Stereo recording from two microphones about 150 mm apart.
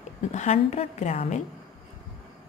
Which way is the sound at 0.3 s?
50° left (ahead or behind).